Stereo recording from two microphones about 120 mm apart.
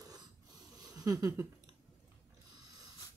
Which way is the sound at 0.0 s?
30° right (ahead or behind).